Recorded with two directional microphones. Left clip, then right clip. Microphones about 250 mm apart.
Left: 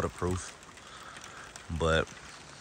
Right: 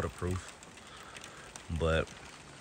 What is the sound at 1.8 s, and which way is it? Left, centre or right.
Speech, centre.